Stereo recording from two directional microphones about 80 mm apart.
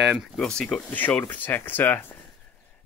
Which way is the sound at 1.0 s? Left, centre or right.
Left.